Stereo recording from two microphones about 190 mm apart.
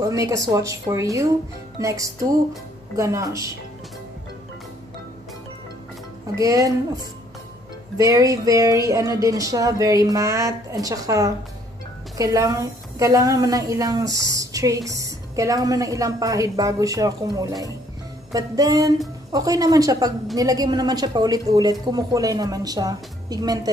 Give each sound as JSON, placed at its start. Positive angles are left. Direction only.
{"t": 0.0, "sound": "a woman's voice", "side_deg": -15}
{"t": 6.4, "sound": "a woman's voice", "side_deg": -20}
{"t": 8.0, "sound": "a woman's voice", "side_deg": -20}